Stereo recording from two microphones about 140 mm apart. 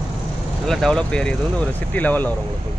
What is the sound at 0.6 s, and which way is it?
Speech, 5° left (ahead or behind).